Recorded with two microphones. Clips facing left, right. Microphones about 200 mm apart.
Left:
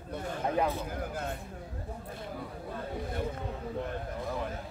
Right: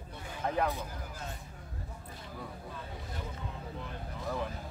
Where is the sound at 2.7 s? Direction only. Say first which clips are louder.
Left 7 dB; 55° left (ahead or behind).